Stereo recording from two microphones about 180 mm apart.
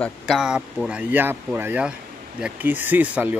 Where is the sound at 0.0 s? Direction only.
Centre (ahead or behind).